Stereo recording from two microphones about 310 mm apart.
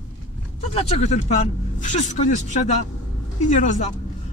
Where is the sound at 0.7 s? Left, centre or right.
Centre.